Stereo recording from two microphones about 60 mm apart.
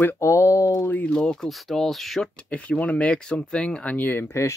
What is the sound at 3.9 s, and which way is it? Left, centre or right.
Speech, left.